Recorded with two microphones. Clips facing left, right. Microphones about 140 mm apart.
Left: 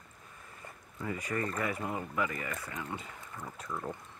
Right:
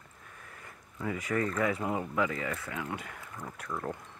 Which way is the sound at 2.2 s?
90° right.